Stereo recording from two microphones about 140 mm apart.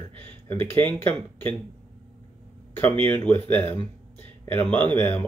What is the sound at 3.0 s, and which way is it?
Speech, 15° left (ahead or behind).